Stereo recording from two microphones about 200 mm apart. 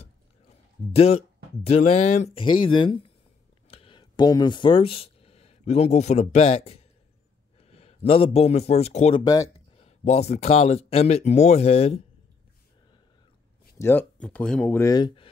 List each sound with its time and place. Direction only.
0.9 s a man's voice: 30° left (ahead or behind)
9.2 s speech: 15° left (ahead or behind)
9.8 s speech: 30° left (ahead or behind)
13.7 s speech: 10° left (ahead or behind)